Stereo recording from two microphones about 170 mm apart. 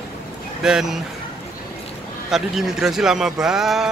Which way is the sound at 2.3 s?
Centre (ahead or behind).